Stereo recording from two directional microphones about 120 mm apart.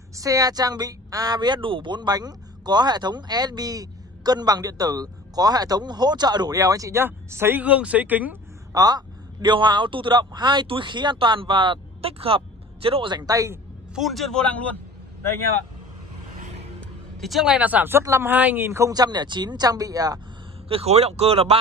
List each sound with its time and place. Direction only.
0.1 s speech: 30° right (ahead or behind)
8.7 s a man's voice: 35° right (ahead or behind)
13.1 s speech: 30° right (ahead or behind)
13.9 s a man's voice: centre (ahead or behind)
16.3 s vehicle: 70° right (ahead or behind)
17.2 s speech: centre (ahead or behind); by 20.2 s 30° right (ahead or behind)
20.6 s speech: 55° right (ahead or behind)